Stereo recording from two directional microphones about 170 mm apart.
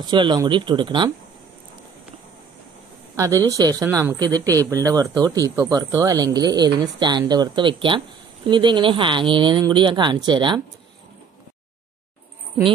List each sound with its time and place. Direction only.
0.0 s speech: 25° right (ahead or behind)
3.2 s speech: 20° right (ahead or behind)